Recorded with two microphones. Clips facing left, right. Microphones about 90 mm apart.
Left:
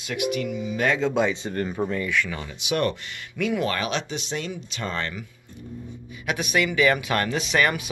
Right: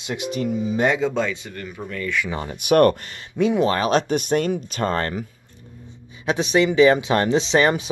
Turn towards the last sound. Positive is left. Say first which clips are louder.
# right 5 dB
turn(degrees=-25)  # may be behind; listen again after turning